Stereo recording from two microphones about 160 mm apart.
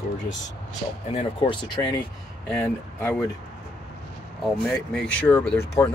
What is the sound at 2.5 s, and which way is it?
Speech, 15° left (ahead or behind).